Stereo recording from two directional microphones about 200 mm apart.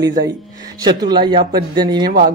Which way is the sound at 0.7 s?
20° right (ahead or behind).